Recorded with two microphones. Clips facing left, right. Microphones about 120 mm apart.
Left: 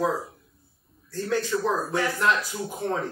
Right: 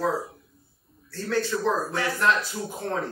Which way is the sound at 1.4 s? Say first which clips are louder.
Even; 15° left (ahead or behind).